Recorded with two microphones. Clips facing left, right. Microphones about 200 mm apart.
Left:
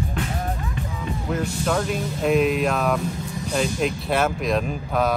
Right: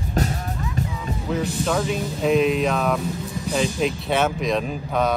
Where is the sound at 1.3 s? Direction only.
Centre (ahead or behind).